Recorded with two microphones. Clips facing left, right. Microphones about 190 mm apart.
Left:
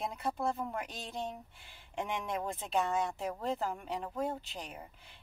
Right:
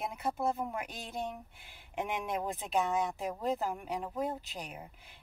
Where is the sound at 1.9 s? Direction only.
15° right (ahead or behind).